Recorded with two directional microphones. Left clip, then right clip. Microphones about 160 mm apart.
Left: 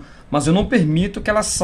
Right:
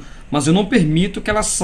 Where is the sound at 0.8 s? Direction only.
70° left (ahead or behind).